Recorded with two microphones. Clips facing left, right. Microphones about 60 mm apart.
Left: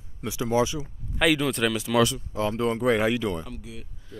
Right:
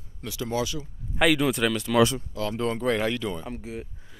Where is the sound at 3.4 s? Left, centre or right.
Right.